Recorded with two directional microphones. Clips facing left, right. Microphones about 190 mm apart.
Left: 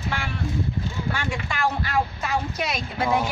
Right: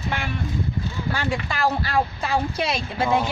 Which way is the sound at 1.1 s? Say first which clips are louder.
Right 3 dB; 35° right (ahead or behind).